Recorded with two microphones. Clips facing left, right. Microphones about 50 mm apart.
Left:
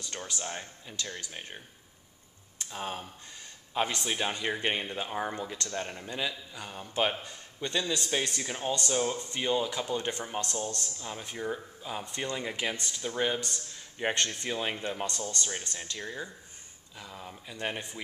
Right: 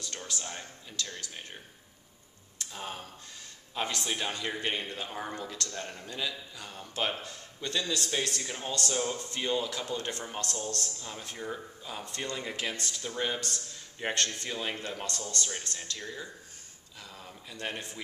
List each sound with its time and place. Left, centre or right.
0.0 s speech: left
2.6 s speech: centre
15.6 s speech: left